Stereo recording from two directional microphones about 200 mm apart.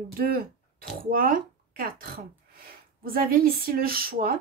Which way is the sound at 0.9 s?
45° right (ahead or behind).